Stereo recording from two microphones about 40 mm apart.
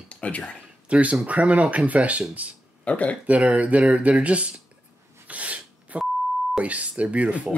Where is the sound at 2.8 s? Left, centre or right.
Left.